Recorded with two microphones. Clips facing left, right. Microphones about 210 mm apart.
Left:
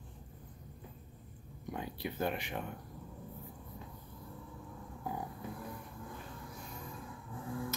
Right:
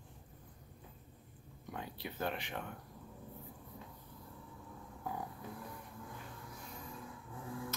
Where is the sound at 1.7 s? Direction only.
15° left (ahead or behind).